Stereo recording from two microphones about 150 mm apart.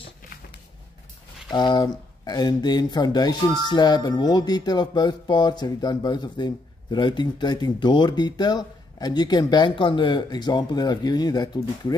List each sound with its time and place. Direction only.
1.5 s speech: 30° left (ahead or behind)